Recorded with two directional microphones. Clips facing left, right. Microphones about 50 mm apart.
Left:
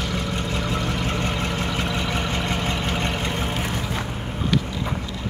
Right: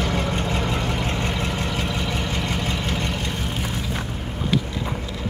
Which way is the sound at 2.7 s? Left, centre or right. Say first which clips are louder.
Left 1 dB; centre.